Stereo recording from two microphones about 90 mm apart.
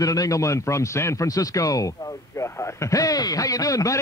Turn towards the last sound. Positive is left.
turn(degrees=40)  # may be behind; listen again after turning